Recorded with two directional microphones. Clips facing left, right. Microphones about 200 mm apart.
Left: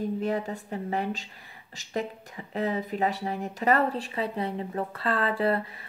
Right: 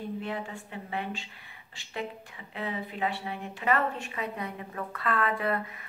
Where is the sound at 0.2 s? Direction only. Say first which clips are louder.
Left 7 dB; 40° left (ahead or behind).